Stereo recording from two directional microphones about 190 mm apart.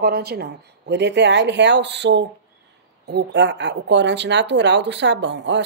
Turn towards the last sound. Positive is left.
turn(degrees=-65)  # may be behind; listen again after turning